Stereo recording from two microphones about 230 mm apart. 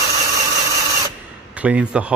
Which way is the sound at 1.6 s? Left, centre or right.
Centre.